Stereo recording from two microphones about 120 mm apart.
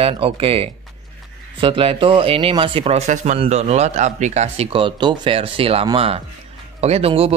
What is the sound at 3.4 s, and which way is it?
A man's voice, 65° right (ahead or behind).